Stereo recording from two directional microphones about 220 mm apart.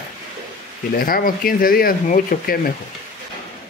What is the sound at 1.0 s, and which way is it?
Speech, 40° left (ahead or behind).